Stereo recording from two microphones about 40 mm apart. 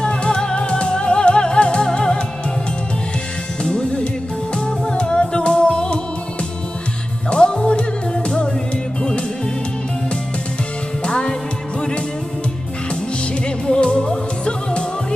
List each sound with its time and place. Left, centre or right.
0.0 s music: left
3.6 s music: left
7.2 s music: left
11.1 s music: centre
13.7 s music: left